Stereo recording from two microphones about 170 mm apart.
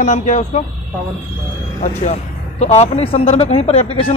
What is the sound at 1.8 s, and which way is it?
Speech, 45° left (ahead or behind).